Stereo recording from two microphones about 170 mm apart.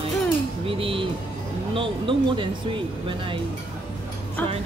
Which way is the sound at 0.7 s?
30° right (ahead or behind).